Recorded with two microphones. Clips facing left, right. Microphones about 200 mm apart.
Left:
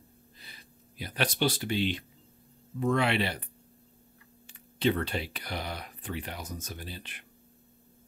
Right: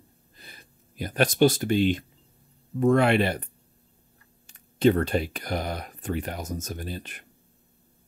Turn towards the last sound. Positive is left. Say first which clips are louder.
# right 7 dB
turn(degrees=-45)  # may be behind; listen again after turning